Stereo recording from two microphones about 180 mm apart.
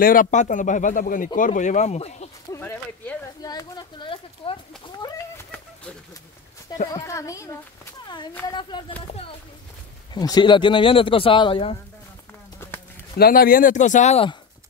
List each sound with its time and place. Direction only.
0.0 s speech: 50° left (ahead or behind)
2.5 s speech: 10° left (ahead or behind)
3.4 s a sound: 20° left (ahead or behind)
6.9 s a sound: 20° left (ahead or behind)
8.5 s speech: 25° left (ahead or behind)
10.1 s speech: 20° left (ahead or behind)
13.2 s speech: 55° left (ahead or behind); by 14.3 s 35° left (ahead or behind)